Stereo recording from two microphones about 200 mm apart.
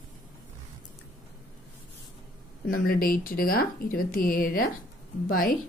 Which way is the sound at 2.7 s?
45° left (ahead or behind).